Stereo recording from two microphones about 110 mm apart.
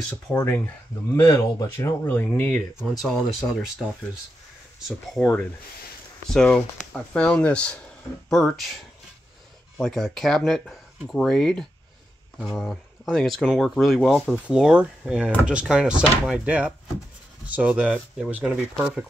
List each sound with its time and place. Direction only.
0.1 s speech: 20° left (ahead or behind)
2.0 s speech: 15° left (ahead or behind)
2.8 s speech: centre (ahead or behind)
5.2 s speech: 15° left (ahead or behind)
9.8 s speech: 5° left (ahead or behind)